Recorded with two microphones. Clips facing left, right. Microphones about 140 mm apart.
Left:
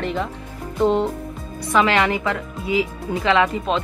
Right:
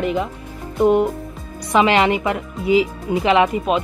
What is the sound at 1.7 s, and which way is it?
Speech, 25° right (ahead or behind).